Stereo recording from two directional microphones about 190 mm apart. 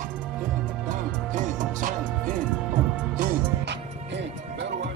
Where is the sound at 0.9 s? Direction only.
45° right (ahead or behind).